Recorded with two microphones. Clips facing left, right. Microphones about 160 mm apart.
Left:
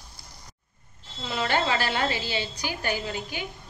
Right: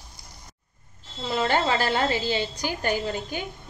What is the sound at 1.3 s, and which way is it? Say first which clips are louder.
A woman's voice: right 3 dB; 40° right (ahead or behind).